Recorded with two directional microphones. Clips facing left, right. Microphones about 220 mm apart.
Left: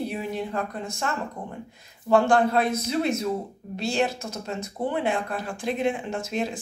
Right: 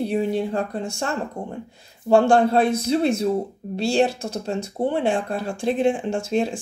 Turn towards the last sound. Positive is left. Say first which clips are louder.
# right 6 dB
turn(degrees=-30)  # may be behind; listen again after turning